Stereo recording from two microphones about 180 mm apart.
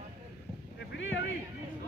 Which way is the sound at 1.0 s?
90° left.